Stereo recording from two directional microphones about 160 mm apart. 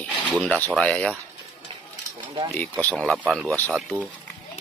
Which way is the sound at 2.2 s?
30° right (ahead or behind).